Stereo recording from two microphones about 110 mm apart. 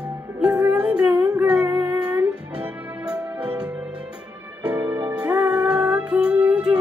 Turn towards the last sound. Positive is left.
turn(degrees=-10)  # may be behind; listen again after turning